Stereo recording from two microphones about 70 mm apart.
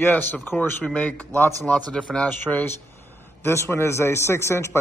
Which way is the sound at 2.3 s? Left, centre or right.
Left.